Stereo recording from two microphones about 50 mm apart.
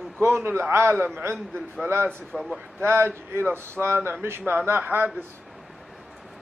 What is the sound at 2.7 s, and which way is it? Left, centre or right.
Speech, right.